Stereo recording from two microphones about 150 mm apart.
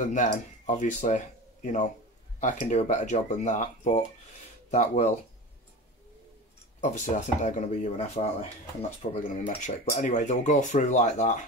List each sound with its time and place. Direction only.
0.0 s speech: 55° left (ahead or behind)
6.8 s speech: 55° left (ahead or behind)